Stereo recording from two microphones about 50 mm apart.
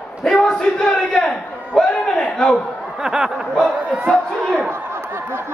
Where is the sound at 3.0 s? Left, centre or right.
Centre.